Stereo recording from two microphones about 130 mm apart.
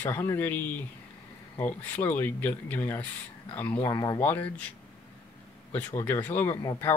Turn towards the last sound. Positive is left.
turn(degrees=25)  # may be behind; listen again after turning